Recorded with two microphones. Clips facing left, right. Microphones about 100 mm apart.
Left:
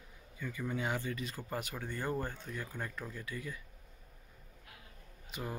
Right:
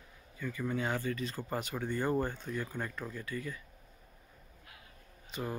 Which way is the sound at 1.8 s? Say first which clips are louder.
Right 7 dB; 20° right (ahead or behind).